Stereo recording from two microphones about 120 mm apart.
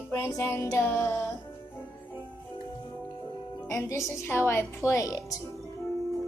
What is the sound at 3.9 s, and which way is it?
Music, 25° left (ahead or behind).